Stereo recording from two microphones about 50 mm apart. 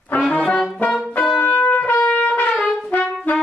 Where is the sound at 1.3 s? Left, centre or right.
Left.